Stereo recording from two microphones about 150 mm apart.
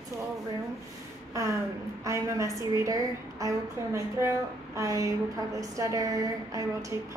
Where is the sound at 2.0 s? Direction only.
20° right (ahead or behind).